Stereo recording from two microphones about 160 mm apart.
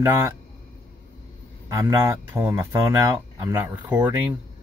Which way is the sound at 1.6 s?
20° right (ahead or behind).